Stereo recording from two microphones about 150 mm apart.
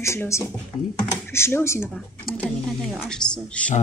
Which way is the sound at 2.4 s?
5° left (ahead or behind).